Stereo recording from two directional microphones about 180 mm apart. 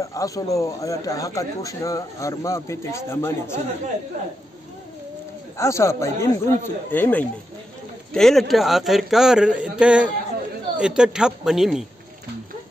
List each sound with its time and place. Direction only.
0.0 s speech: 20° left (ahead or behind)
5.6 s a man's voice: 15° left (ahead or behind); by 11.8 s centre (ahead or behind)